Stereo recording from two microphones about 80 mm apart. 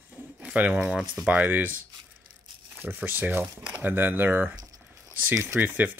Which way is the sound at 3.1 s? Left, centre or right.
Right.